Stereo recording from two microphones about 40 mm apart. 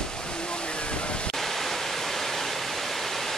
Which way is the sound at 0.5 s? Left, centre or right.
Left.